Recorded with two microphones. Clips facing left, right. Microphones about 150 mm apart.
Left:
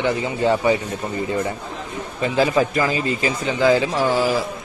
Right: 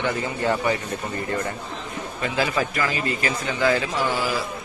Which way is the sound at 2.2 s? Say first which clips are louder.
Left 6 dB; 30° left (ahead or behind).